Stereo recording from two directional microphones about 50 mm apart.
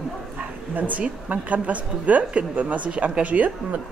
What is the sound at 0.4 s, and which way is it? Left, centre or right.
Speech, right.